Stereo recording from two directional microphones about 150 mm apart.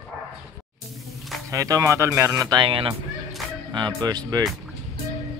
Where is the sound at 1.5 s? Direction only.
20° right (ahead or behind).